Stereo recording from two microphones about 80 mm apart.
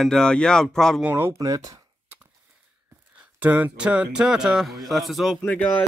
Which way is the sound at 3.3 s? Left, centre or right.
Centre.